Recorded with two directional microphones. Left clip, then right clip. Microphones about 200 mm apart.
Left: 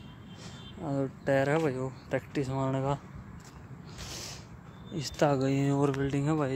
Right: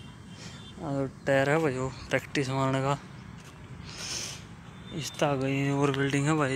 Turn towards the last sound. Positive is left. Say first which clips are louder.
# right 3 dB
turn(degrees=5)  # may be behind; listen again after turning